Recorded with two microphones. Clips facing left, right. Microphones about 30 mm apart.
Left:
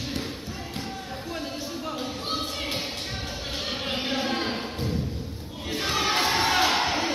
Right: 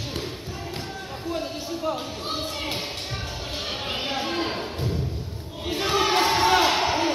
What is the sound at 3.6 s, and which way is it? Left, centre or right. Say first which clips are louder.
Music: even; centre.